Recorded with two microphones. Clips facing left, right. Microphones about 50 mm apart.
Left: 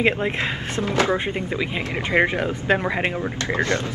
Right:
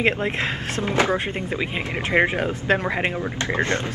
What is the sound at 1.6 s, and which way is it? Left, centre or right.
Speech, centre.